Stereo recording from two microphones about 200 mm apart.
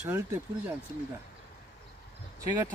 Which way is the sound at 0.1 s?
10° right (ahead or behind).